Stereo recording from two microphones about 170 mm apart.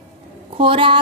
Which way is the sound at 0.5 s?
30° right (ahead or behind).